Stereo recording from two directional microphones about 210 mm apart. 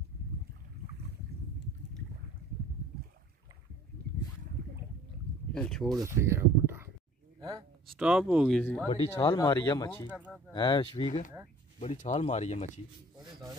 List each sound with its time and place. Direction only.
4.1 s boat: 50° right (ahead or behind)
5.5 s speech: 5° left (ahead or behind)
5.9 s speech: 15° right (ahead or behind)
7.9 s speech: 5° right (ahead or behind)
8.8 s speech: 25° left (ahead or behind)
10.0 s speech: 5° right (ahead or behind)
10.5 s speech: 20° left (ahead or behind)